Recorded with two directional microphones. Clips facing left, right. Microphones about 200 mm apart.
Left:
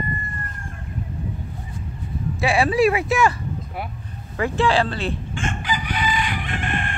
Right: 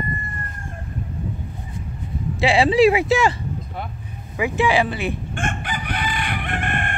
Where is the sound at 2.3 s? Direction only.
25° right (ahead or behind).